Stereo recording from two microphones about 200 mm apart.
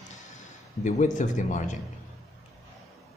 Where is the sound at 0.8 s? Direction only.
40° left (ahead or behind).